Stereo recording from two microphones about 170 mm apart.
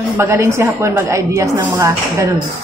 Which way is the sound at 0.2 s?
15° right (ahead or behind).